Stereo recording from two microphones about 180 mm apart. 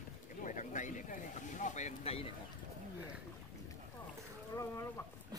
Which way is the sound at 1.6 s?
40° left (ahead or behind).